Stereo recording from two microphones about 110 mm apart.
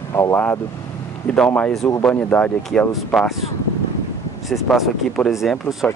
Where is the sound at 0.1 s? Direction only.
30° left (ahead or behind).